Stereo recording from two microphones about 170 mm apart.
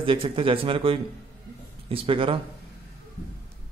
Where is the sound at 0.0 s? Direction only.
30° right (ahead or behind).